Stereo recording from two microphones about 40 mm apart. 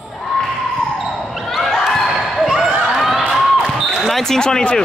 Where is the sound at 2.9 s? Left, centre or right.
Centre.